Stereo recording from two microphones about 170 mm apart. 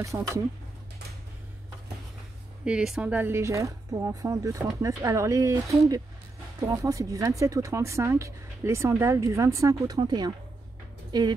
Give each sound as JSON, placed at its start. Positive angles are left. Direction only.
{"t": 0.0, "sound": "speech", "side_deg": -20}
{"t": 2.6, "sound": "speech", "side_deg": -5}